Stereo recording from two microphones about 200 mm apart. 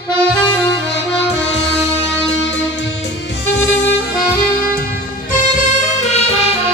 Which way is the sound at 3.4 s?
60° left (ahead or behind).